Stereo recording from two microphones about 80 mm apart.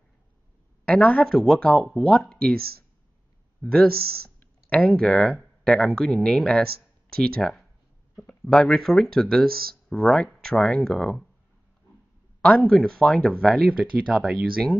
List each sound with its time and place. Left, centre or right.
0.8 s speech: centre
1.2 s speech: centre
3.6 s speech: centre
12.4 s speech: centre
13.7 s speech: centre